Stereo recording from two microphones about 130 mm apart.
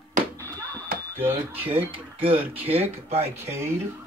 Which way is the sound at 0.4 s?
25° right (ahead or behind).